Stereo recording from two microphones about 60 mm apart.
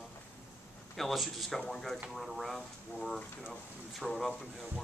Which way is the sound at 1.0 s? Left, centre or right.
Centre.